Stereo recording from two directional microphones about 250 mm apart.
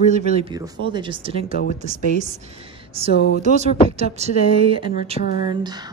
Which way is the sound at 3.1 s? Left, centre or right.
Left.